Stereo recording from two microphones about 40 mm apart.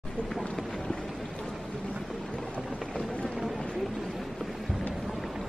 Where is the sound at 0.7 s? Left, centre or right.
Centre.